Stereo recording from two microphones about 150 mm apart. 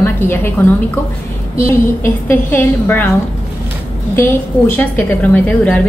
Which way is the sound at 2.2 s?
15° left (ahead or behind).